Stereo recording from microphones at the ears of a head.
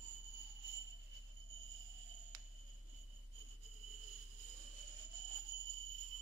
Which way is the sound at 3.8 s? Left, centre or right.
Right.